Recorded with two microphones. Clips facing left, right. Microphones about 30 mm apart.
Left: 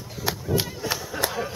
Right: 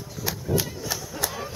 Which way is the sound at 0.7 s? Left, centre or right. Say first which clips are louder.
Left 3 dB; left.